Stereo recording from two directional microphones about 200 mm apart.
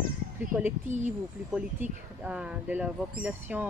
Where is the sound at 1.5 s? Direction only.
5° right (ahead or behind).